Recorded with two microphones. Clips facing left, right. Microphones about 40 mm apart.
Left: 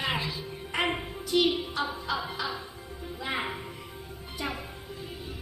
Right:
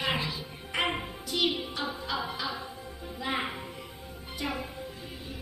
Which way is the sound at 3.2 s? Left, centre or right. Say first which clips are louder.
Even; centre.